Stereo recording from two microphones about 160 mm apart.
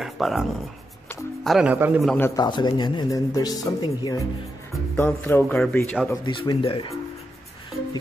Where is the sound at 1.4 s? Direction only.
5° right (ahead or behind).